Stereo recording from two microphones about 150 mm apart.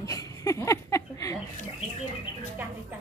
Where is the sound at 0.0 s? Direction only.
20° left (ahead or behind).